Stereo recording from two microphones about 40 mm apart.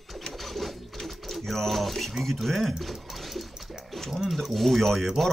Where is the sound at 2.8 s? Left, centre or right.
Centre.